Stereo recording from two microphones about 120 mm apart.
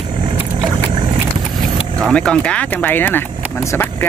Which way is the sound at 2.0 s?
5° left (ahead or behind).